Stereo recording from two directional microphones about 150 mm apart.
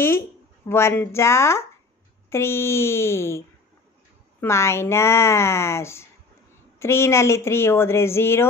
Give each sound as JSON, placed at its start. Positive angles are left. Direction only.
{"t": 0.0, "sound": "speech", "side_deg": 15}